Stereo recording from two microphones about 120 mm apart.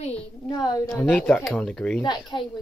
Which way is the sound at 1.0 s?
10° left (ahead or behind).